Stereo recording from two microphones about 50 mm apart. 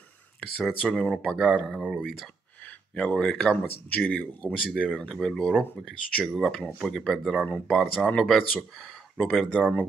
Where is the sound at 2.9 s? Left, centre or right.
Centre.